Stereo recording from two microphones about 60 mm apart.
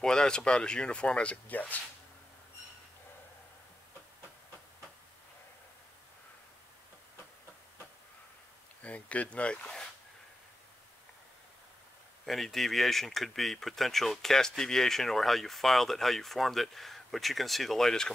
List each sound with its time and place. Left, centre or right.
0.0 s speech: centre
8.8 s speech: left
12.3 s speech: centre